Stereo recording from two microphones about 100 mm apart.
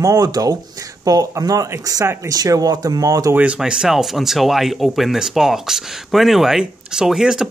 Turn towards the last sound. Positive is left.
turn(degrees=-5)  # may be behind; listen again after turning